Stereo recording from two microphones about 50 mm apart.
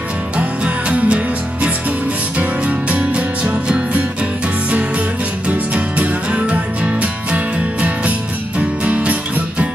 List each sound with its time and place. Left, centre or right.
0.4 s music: right
5.5 s music: right